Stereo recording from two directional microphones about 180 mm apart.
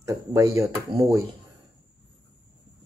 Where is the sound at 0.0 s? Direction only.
15° right (ahead or behind).